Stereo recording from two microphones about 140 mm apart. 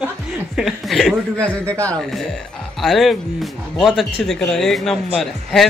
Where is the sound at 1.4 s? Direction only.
10° left (ahead or behind).